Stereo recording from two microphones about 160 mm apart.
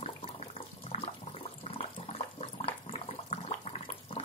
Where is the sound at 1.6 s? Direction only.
40° left (ahead or behind).